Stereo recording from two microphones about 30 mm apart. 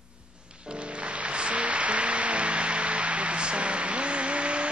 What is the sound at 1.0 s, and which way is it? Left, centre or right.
Music, right.